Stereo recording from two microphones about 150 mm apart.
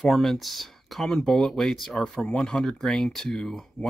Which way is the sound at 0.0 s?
Centre (ahead or behind).